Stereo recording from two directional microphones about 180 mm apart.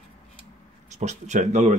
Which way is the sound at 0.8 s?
40° right (ahead or behind).